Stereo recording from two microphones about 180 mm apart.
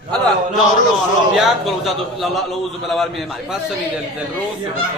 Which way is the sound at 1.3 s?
Centre (ahead or behind).